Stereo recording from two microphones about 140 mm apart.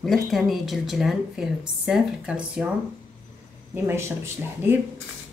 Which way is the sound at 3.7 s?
15° right (ahead or behind).